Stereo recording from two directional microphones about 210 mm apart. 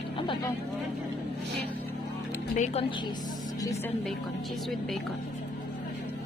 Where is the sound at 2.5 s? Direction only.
35° left (ahead or behind).